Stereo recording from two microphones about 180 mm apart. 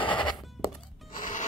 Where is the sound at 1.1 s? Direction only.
45° left (ahead or behind).